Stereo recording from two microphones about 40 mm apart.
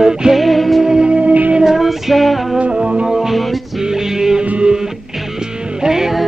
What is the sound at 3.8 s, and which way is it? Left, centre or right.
Music, centre.